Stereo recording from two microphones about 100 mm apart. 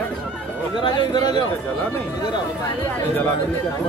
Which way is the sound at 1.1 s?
45° left (ahead or behind).